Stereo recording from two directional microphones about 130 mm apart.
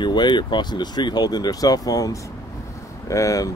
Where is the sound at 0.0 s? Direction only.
35° left (ahead or behind).